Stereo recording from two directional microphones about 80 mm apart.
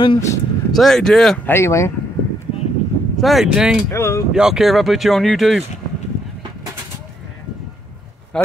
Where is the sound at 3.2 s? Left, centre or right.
Centre.